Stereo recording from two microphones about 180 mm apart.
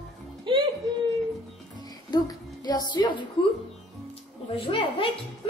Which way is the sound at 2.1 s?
25° left (ahead or behind).